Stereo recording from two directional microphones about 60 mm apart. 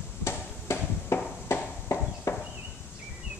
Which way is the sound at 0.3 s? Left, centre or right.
Left.